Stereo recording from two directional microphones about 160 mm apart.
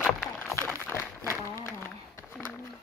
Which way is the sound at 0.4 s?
15° left (ahead or behind).